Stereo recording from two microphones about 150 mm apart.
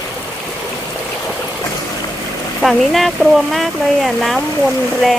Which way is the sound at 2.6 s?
Centre (ahead or behind).